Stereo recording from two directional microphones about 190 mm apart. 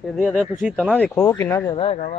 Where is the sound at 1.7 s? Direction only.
35° left (ahead or behind).